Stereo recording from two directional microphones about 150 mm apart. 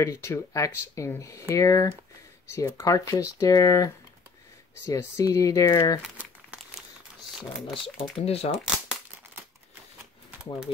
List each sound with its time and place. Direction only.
0.0 s speech: 20° left (ahead or behind)
7.5 s speech: centre (ahead or behind)
7.8 s speech: 40° left (ahead or behind)